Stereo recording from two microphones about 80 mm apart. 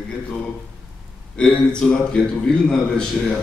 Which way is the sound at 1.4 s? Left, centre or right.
Centre.